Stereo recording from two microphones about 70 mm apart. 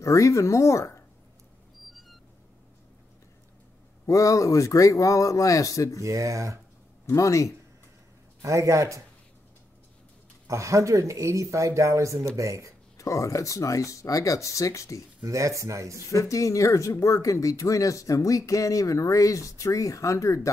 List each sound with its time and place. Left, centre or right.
0.0 s speech: left
1.9 s a sound: centre
4.0 s speech: left
6.0 s speech: right
7.1 s speech: left
8.4 s speech: right
10.4 s speech: right
12.9 s speech: left
15.2 s speech: right
16.1 s speech: left